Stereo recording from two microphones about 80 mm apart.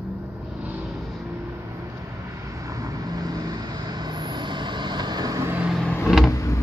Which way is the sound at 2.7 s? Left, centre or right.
Right.